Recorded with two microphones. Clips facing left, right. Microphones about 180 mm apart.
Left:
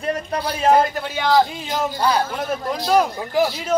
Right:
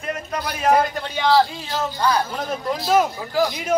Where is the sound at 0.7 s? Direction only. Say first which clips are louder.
Left 2 dB; centre (ahead or behind).